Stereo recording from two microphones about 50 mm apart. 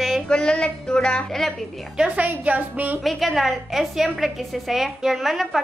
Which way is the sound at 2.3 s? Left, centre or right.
Right.